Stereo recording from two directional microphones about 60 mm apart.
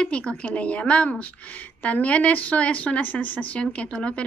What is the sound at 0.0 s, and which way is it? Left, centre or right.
Speech, centre.